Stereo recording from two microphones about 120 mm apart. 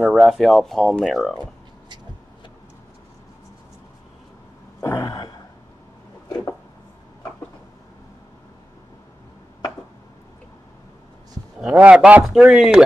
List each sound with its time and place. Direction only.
0.0 s speech: centre (ahead or behind)
4.8 s throat clearing: 25° left (ahead or behind)
11.6 s a man's voice: 10° right (ahead or behind)